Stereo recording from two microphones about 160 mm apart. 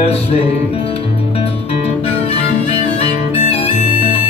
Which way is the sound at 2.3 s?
40° left (ahead or behind).